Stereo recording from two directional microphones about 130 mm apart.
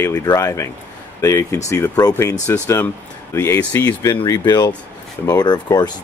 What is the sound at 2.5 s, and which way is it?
Speech, 15° left (ahead or behind).